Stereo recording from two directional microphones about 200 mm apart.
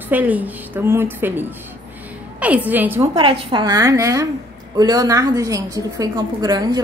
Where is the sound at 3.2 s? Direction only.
25° right (ahead or behind).